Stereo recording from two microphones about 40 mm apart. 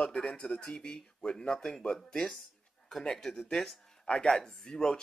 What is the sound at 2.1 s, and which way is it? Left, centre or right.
Speech, left.